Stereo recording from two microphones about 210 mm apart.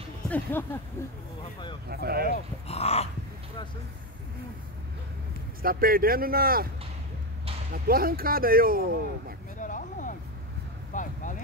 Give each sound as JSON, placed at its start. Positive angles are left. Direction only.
{"t": 0.3, "sound": "speech", "side_deg": 10}
{"t": 1.9, "sound": "speech", "side_deg": -50}
{"t": 2.7, "sound": "a sound", "side_deg": 30}
{"t": 5.6, "sound": "speech", "side_deg": -45}
{"t": 7.7, "sound": "speech", "side_deg": -45}
{"t": 9.6, "sound": "a sound", "side_deg": 40}
{"t": 10.9, "sound": "speech", "side_deg": 40}